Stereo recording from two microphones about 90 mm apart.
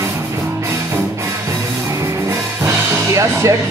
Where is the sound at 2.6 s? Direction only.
35° right (ahead or behind).